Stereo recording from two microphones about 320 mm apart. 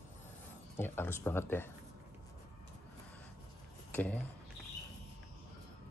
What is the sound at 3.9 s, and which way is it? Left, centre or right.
Speech, centre.